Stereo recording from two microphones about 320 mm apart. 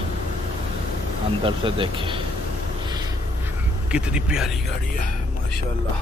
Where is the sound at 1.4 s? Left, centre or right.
Centre.